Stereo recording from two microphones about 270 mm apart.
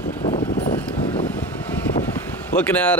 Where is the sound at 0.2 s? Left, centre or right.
Centre.